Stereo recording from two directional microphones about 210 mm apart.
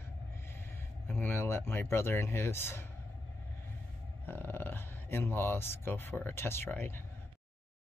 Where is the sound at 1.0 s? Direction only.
10° left (ahead or behind).